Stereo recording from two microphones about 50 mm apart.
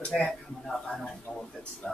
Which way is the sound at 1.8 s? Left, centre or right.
Centre.